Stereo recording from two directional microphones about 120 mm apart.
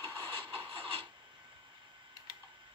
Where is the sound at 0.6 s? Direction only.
50° right (ahead or behind).